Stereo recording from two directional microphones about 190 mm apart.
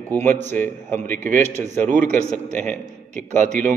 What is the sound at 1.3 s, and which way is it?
Speech, 45° right (ahead or behind).